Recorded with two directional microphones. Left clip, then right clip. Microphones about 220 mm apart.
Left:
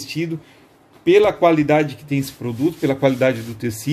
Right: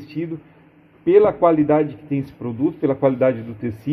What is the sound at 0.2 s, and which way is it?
Speech, 10° left (ahead or behind).